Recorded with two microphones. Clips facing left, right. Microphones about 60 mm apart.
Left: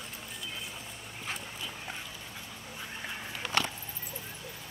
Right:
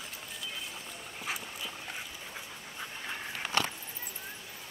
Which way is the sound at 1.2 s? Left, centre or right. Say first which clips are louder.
Right 1 dB; centre.